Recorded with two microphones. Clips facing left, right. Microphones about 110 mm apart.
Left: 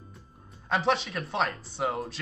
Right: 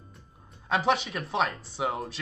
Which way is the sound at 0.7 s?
Centre (ahead or behind).